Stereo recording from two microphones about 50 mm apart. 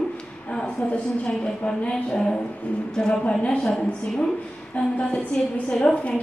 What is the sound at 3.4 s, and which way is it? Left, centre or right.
Speech, left.